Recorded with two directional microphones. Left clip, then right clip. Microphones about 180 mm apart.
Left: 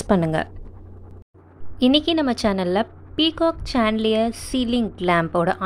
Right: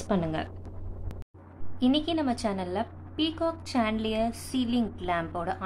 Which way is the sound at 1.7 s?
35° left (ahead or behind).